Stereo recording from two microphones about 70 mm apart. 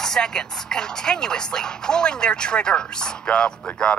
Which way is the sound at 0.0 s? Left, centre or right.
Centre.